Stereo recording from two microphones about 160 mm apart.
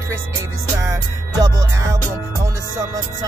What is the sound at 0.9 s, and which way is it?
Music, 20° right (ahead or behind).